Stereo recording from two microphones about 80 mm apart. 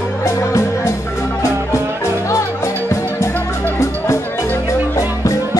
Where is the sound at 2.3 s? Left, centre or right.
Left.